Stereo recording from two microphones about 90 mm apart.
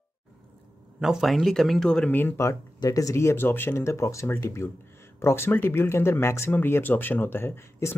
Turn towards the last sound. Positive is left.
turn(degrees=30)  # may be behind; listen again after turning